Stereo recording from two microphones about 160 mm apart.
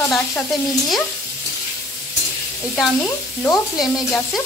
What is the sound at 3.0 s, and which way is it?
Speech, 20° left (ahead or behind).